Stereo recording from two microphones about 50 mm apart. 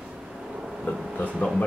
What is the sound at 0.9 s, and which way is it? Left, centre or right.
Speech, left.